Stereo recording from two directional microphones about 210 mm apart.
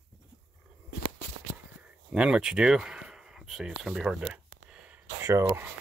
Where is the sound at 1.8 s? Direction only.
5° right (ahead or behind).